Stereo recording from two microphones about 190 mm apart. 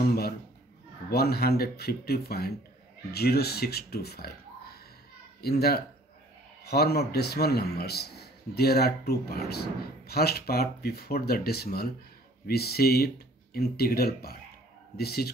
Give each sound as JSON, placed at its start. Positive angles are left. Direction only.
{"t": 1.1, "sound": "a man's voice", "side_deg": 55}